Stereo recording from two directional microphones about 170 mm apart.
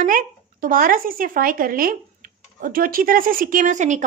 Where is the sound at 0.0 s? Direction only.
55° right (ahead or behind).